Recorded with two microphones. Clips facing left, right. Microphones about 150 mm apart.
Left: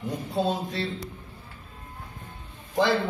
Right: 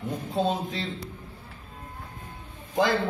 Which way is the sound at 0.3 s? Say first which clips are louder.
Even; centre (ahead or behind).